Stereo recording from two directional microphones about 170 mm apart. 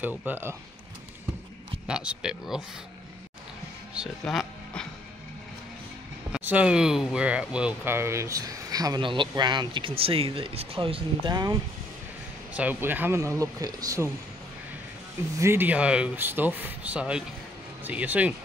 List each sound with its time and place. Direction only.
0.0 s speech: 10° right (ahead or behind)
1.9 s speech: 5° right (ahead or behind)
4.3 s speech: centre (ahead or behind)
6.3 s speech: 5° right (ahead or behind); by 11.5 s 25° right (ahead or behind)
12.5 s speech: 10° right (ahead or behind)
15.3 s speech: 15° right (ahead or behind)